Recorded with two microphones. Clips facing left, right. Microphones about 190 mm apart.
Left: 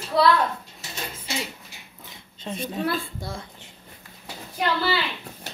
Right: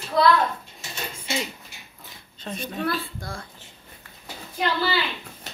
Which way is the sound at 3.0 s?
20° left (ahead or behind).